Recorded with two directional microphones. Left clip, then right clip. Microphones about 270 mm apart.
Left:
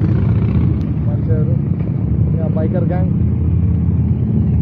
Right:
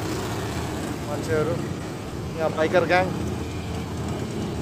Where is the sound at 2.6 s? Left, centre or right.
Right.